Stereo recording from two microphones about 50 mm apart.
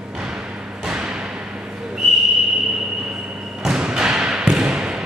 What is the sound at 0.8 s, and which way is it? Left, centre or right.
Thump, centre.